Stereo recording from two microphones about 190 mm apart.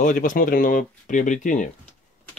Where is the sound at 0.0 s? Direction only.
45° left (ahead or behind).